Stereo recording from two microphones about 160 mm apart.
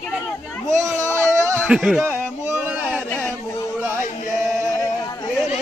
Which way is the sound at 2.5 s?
10° right (ahead or behind).